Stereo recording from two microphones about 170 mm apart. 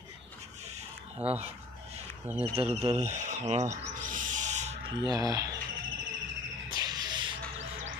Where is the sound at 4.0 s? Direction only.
50° right (ahead or behind).